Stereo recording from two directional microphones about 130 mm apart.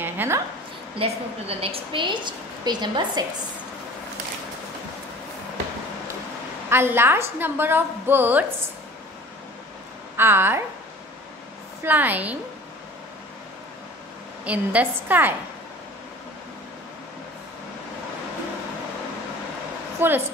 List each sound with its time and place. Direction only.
0.0 s a sound: 15° right (ahead or behind)
0.9 s a woman's voice: 50° right (ahead or behind)
6.7 s a woman's voice: 20° right (ahead or behind)
10.1 s a woman's voice: 15° right (ahead or behind)
11.8 s a woman's voice: 15° right (ahead or behind)
14.4 s a woman's voice: 10° right (ahead or behind)
20.0 s a woman's voice: 15° right (ahead or behind)